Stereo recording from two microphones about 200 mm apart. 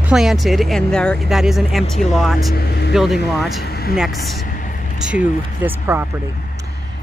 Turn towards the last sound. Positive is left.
turn(degrees=-10)  # may be behind; listen again after turning